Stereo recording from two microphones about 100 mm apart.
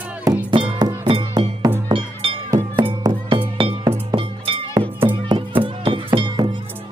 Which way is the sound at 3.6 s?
60° right (ahead or behind).